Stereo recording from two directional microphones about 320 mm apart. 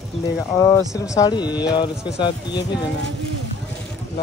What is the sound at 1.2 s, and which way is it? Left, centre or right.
Speech, centre.